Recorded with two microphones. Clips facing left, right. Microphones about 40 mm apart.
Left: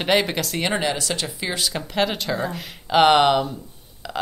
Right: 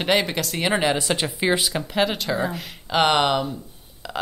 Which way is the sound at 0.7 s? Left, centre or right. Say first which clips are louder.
Right 2 dB; centre.